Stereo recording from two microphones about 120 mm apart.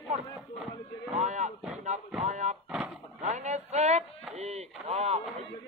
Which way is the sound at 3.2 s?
75° right (ahead or behind).